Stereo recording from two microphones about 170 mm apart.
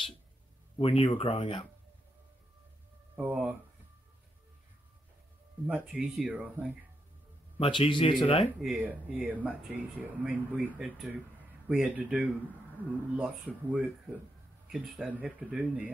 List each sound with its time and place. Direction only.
0.7 s speech: 35° left (ahead or behind)
3.2 s speech: 10° right (ahead or behind)
5.7 s speech: 5° right (ahead or behind)
7.5 s speech: 35° left (ahead or behind)
8.5 s speech: 5° right (ahead or behind)
13.7 s speech: 10° right (ahead or behind)